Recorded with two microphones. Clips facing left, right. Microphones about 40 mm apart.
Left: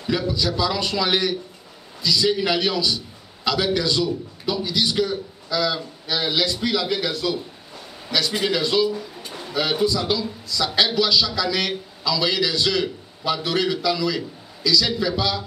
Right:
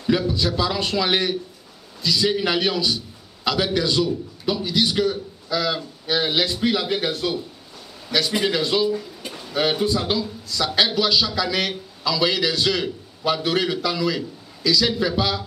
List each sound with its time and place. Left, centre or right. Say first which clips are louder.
0.3 s a man's voice: even; centre
8.1 s a man's voice: right 1 dB; centre
9.8 s a man's voice: even; right
11.0 s a man's voice: even; centre